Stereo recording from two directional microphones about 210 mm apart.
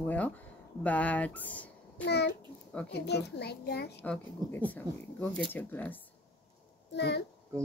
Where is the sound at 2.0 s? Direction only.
50° left (ahead or behind).